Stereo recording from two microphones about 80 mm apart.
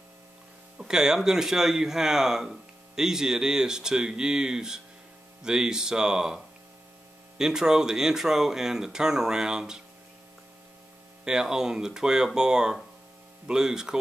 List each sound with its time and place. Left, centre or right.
0.7 s speech: centre
11.2 s speech: centre